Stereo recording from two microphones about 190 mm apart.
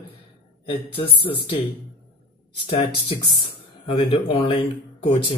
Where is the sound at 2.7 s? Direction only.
30° left (ahead or behind).